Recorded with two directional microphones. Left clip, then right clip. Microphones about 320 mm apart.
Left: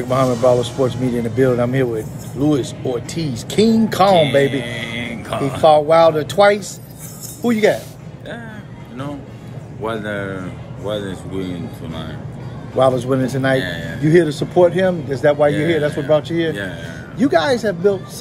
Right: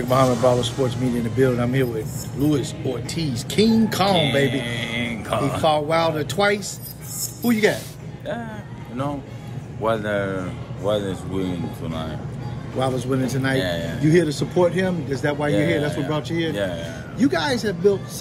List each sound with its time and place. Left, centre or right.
0.1 s speech: centre
4.1 s speech: centre
5.6 s speech: centre
9.8 s speech: centre
12.7 s speech: centre
13.6 s speech: centre
14.0 s speech: centre